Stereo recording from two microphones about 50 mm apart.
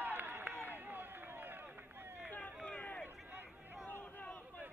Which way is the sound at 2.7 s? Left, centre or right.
Left.